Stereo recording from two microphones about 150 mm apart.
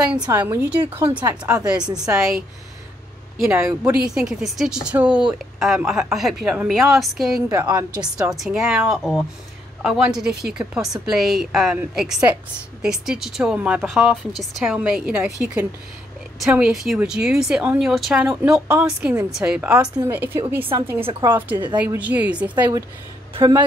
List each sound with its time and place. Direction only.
0.3 s speech: 15° right (ahead or behind)
1.8 s a woman's voice: 25° right (ahead or behind)
2.1 s speech: 5° right (ahead or behind)
3.4 s speech: 15° right (ahead or behind)
4.1 s speech: 5° right (ahead or behind)
7.4 s a woman's voice: 20° right (ahead or behind)
8.2 s speech: 5° right (ahead or behind)
21.0 s a woman's voice: 35° right (ahead or behind)
21.3 s speech: 10° right (ahead or behind)